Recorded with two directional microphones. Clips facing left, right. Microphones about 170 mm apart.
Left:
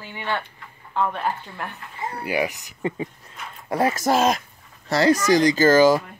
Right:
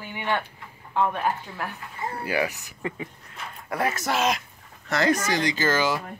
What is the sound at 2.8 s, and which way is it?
Speech, 30° left (ahead or behind).